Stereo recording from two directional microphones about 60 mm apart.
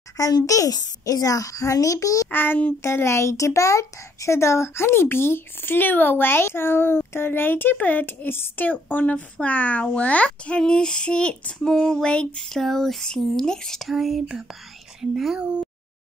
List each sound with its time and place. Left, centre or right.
0.2 s a child's voice: left
2.3 s a child's voice: left
2.8 s a child's voice: left
10.6 s child singing: centre
15.0 s speech: centre
15.3 s speech: centre